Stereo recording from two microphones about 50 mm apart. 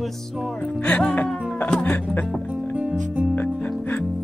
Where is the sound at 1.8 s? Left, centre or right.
Left.